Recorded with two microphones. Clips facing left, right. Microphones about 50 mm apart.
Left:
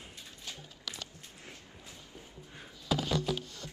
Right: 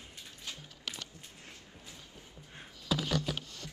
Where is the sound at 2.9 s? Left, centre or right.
Right.